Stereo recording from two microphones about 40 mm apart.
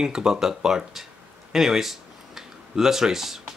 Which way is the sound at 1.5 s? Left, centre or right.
Centre.